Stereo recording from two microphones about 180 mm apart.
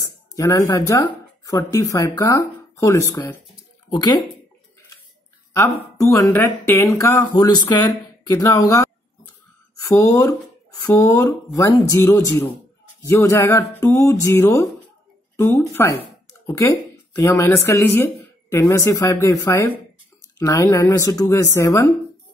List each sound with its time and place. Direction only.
0.3 s speech: 20° left (ahead or behind)
5.9 s speech: 20° left (ahead or behind)
9.8 s speech: 15° left (ahead or behind)